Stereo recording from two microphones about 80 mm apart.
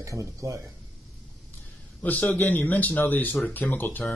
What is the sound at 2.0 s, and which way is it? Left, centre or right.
Speech, left.